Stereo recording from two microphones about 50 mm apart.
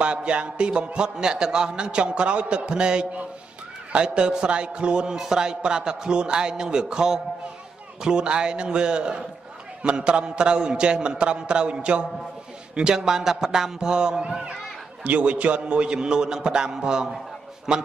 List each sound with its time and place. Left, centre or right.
0.0 s a man's voice: right